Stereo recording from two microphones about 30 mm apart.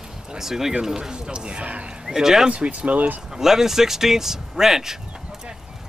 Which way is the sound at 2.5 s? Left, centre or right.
Right.